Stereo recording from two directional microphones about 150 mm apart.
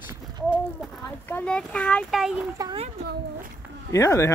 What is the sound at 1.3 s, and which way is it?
Speech, 10° left (ahead or behind).